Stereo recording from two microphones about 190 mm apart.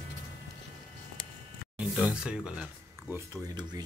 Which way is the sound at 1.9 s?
5° right (ahead or behind).